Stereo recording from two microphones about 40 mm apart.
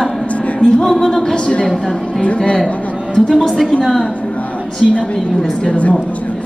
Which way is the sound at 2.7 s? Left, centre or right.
Left.